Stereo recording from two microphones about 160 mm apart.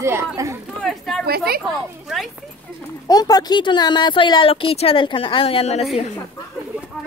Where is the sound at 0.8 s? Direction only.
Centre (ahead or behind).